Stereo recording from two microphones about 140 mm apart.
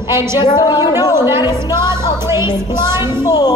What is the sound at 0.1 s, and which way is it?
Speech, 20° right (ahead or behind).